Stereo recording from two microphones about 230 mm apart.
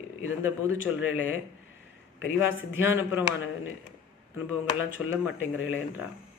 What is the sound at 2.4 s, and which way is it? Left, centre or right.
Speech, centre.